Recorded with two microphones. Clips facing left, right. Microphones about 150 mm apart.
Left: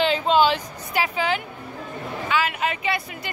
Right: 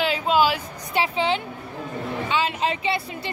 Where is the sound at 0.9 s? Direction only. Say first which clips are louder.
Right 1 dB; 25° right (ahead or behind).